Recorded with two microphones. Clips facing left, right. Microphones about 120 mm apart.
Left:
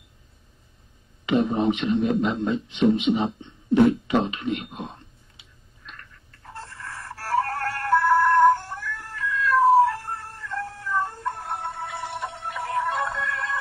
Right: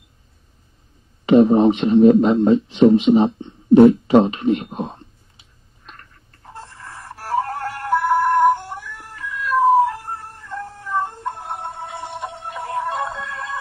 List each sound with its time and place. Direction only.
1.2 s a man's voice: 40° right (ahead or behind)
5.9 s a sound: 35° right (ahead or behind)
6.4 s music: 15° right (ahead or behind)